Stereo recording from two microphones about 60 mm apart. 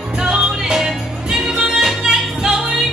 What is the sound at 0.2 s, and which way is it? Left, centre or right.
Music, centre.